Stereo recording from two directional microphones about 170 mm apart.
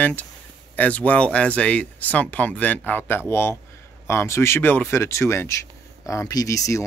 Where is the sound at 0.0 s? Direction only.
10° left (ahead or behind).